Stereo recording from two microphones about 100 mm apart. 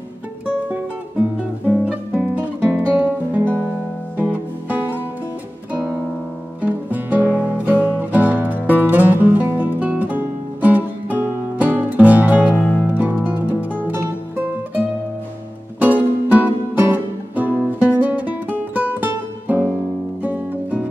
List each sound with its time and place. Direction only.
0.5 s music: 15° right (ahead or behind)
1.7 s guitar: 15° right (ahead or behind)
4.2 s music: 15° right (ahead or behind)